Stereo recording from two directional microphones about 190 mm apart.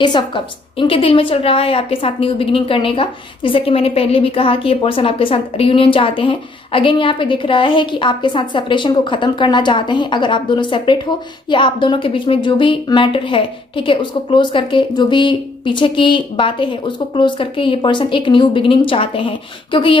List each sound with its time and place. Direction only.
0.0 s a woman's voice: 25° left (ahead or behind)